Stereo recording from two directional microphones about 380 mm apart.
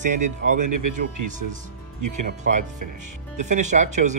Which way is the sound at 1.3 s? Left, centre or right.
Centre.